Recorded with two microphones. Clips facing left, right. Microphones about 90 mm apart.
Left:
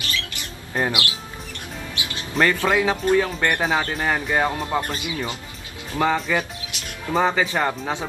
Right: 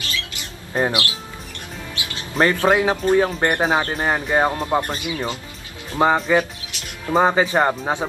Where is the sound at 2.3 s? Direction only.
30° right (ahead or behind).